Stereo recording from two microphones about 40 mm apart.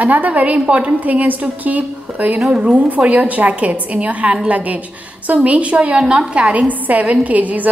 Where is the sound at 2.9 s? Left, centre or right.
Right.